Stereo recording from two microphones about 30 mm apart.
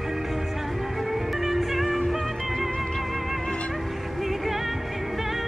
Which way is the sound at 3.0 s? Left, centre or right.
Centre.